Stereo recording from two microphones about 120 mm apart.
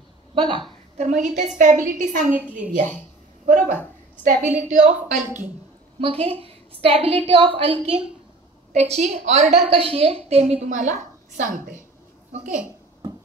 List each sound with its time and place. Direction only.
0.3 s a woman's voice: 45° right (ahead or behind)
0.9 s a woman's voice: 75° right (ahead or behind)
1.6 s a woman's voice: 90° right
3.4 s a woman's voice: 90° right; by 5.2 s 75° right (ahead or behind)
5.9 s a woman's voice: 50° right (ahead or behind)
8.7 s a woman's voice: 65° right (ahead or behind)
9.7 s a woman's voice: 50° right (ahead or behind); by 11.8 s 90° right